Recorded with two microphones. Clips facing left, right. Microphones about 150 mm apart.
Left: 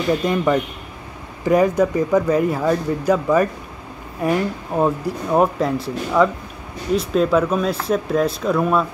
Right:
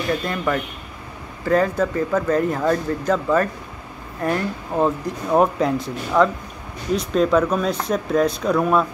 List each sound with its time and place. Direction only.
0.2 s speech: 15° left (ahead or behind); by 8.8 s centre (ahead or behind)